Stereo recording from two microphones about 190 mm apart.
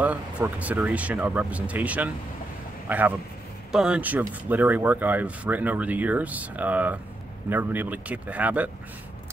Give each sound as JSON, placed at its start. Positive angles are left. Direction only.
{"t": 0.0, "sound": "speech", "side_deg": -5}